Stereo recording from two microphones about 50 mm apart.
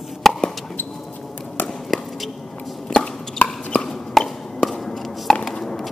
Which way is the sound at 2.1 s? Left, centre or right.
Centre.